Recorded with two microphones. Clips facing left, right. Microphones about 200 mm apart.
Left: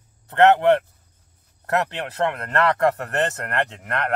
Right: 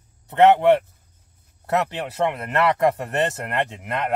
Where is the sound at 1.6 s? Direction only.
15° right (ahead or behind).